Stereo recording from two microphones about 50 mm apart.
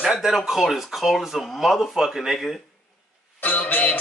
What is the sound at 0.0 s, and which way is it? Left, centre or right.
Speech, centre.